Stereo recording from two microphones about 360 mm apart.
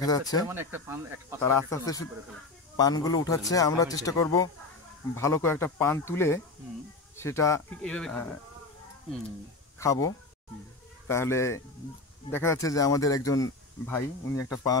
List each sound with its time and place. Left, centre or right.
0.0 s speech: centre
0.5 s speech: centre
1.4 s speech: centre
9.8 s speech: centre